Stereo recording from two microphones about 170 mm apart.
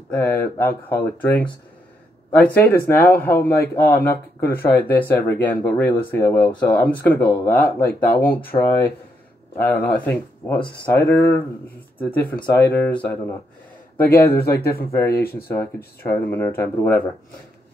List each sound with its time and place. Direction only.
0.1 s speech: 10° left (ahead or behind)
3.9 s a man's voice: 60° left (ahead or behind)
4.4 s speech: 10° left (ahead or behind)
14.3 s a man's voice: 65° left (ahead or behind)
14.9 s speech: 15° left (ahead or behind)
15.1 s a man's voice: 65° left (ahead or behind)
15.4 s speech: 15° left (ahead or behind)